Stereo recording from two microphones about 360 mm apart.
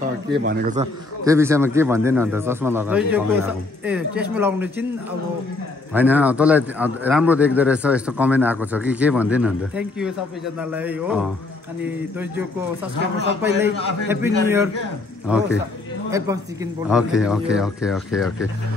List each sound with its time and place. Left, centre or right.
0.4 s a man's voice: right
1.2 s speech: centre
5.9 s speech: centre
13.6 s a man's voice: centre